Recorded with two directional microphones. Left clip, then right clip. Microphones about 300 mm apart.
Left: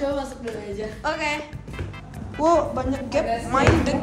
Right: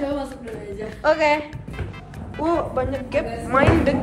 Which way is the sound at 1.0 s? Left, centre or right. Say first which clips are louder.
Right 8 dB; centre.